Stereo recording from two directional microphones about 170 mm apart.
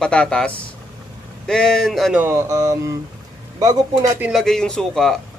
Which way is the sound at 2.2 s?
15° right (ahead or behind).